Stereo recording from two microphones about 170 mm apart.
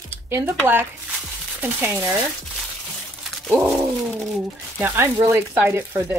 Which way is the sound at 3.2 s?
Centre (ahead or behind).